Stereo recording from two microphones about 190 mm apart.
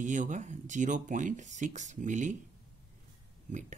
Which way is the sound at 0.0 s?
40° right (ahead or behind).